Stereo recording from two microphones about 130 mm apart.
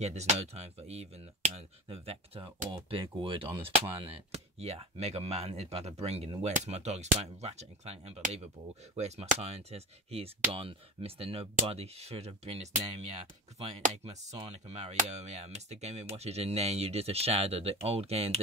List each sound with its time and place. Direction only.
0.0 s speech: 55° right (ahead or behind)